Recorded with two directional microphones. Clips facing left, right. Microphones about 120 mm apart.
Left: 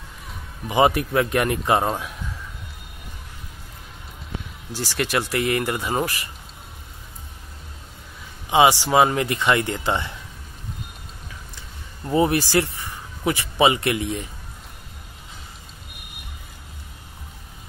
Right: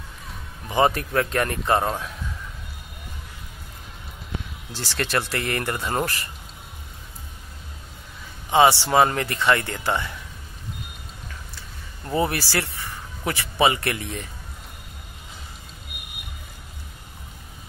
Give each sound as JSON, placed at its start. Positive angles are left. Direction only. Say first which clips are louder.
{"t": 0.7, "sound": "speech", "louder": "left 2 dB", "side_deg": 15}
{"t": 4.7, "sound": "speech", "louder": "left 2 dB", "side_deg": 15}
{"t": 8.5, "sound": "speech", "louder": "left 1 dB", "side_deg": 15}
{"t": 12.0, "sound": "speech", "louder": "left 4 dB", "side_deg": 20}